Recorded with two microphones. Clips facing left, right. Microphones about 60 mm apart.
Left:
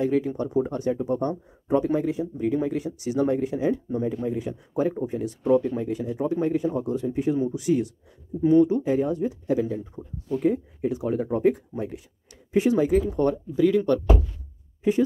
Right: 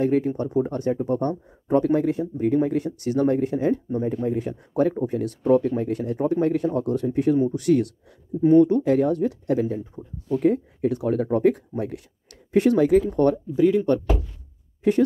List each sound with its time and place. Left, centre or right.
0.0 s speech: right
5.4 s speech: right
8.4 s speech: right
10.0 s speech: centre
10.3 s speech: right
13.6 s speech: right
14.8 s speech: right